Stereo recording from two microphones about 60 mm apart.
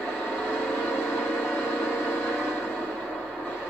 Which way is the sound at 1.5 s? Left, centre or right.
Left.